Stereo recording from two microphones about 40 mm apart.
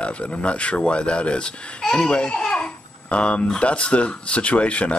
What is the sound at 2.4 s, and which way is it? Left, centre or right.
Babbling, left.